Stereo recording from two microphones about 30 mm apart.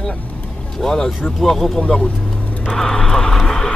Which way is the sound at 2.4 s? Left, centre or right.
Left.